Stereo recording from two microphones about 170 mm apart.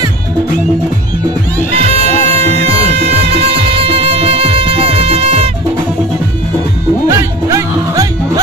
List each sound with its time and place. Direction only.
2.4 s music: 40° right (ahead or behind)
7.1 s music: 15° right (ahead or behind)